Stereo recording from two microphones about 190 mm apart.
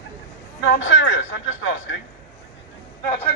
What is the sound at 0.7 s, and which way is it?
Speech, 80° left.